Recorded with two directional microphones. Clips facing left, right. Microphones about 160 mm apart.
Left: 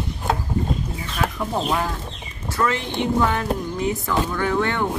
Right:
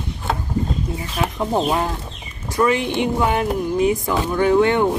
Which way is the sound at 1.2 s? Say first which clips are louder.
Right 4 dB; 25° right (ahead or behind).